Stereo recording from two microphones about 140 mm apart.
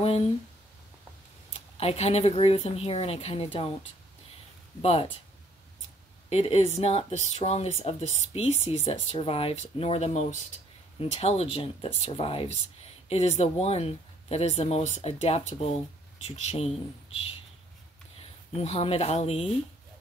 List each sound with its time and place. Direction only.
0.0 s a sound: 45° left (ahead or behind)
1.5 s speech: 45° left (ahead or behind)
4.8 s speech: 45° left (ahead or behind)
6.3 s speech: 50° left (ahead or behind)
18.5 s speech: 50° left (ahead or behind)